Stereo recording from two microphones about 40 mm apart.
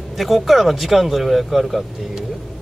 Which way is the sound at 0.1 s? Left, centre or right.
Centre.